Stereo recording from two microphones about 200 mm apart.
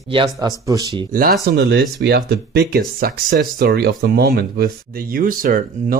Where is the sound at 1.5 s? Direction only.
50° right (ahead or behind).